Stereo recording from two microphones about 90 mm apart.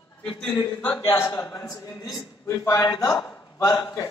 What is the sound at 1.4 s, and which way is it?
A man's voice, 40° left (ahead or behind).